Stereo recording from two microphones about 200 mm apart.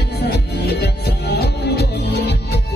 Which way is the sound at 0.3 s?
55° left (ahead or behind).